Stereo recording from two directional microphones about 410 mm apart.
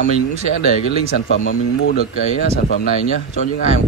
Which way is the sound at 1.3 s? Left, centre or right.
Left.